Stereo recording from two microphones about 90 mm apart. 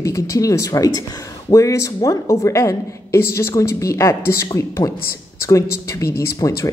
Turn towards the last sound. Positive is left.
turn(degrees=35)  # may be behind; listen again after turning